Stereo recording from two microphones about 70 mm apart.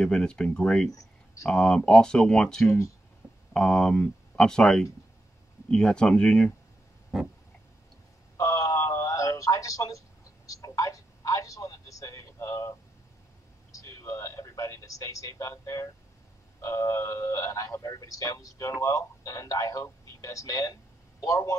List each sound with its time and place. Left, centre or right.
0.0 s speech: centre
2.6 s speech: left
3.5 s speech: centre
8.4 s a sound: left
13.7 s speech: left